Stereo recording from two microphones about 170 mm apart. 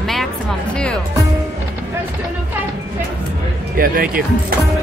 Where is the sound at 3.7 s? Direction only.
55° right (ahead or behind).